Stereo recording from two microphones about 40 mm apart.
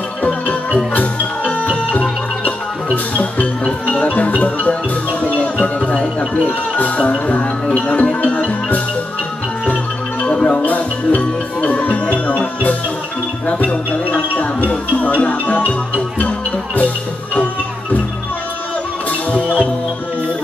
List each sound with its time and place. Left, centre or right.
0.3 s music: left
6.8 s music: left
10.2 s music: left
16.7 s music: left